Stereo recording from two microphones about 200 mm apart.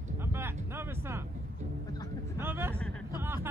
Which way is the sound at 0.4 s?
10° right (ahead or behind).